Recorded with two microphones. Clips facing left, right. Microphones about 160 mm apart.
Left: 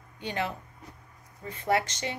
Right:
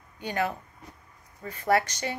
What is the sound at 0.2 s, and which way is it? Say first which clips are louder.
A woman's voice: right 3 dB; 25° left (ahead or behind).